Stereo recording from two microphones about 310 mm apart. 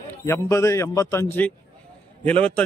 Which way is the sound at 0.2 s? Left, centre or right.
Centre.